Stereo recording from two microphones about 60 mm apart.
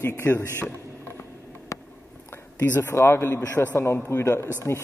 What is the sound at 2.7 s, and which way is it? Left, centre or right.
A man's voice, left.